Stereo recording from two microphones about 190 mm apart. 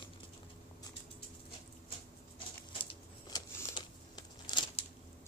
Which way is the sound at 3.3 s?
20° left (ahead or behind).